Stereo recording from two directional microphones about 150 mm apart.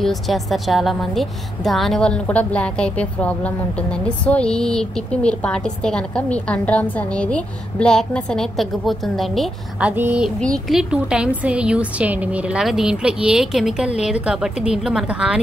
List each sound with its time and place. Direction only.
0.0 s a woman's voice: centre (ahead or behind)
10.4 s a woman's voice: centre (ahead or behind)